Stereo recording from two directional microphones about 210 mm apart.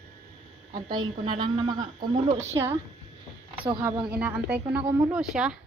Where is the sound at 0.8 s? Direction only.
20° right (ahead or behind).